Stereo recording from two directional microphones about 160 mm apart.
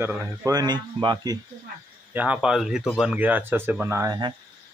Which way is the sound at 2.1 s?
10° right (ahead or behind).